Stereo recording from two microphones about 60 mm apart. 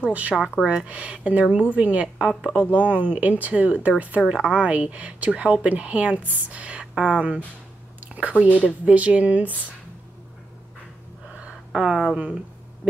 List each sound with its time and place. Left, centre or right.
0.0 s speech: right
2.1 s speech: centre
2.7 s speech: right
4.2 s speech: centre
4.5 s speech: right
11.7 s speech: centre